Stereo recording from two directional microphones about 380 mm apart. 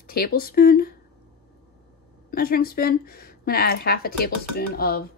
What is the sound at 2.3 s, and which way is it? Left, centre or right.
Speech, left.